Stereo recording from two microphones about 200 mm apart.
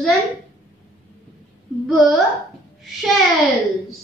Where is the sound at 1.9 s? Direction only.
Centre (ahead or behind).